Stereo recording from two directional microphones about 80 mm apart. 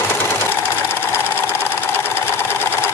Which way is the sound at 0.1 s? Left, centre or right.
Left.